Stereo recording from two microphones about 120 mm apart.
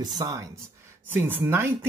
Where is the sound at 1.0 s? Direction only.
15° right (ahead or behind).